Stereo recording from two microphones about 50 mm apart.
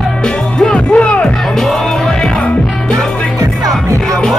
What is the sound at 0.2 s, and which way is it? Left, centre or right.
Music, centre.